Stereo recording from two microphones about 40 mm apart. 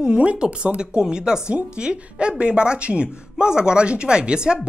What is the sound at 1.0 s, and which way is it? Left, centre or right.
Speech, centre.